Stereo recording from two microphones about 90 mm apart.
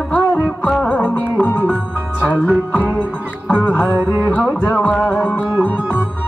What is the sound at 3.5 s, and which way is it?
Music, 20° left (ahead or behind).